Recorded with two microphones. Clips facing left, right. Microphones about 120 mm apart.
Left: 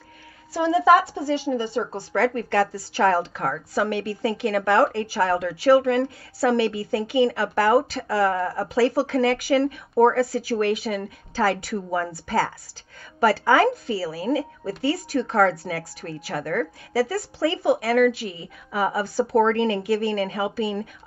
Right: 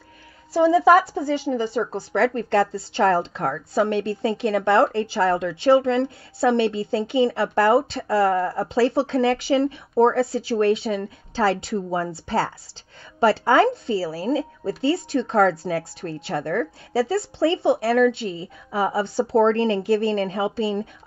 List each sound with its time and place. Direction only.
0.5 s speech: 30° right (ahead or behind)